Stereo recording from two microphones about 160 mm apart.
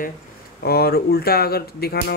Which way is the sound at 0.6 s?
75° left (ahead or behind).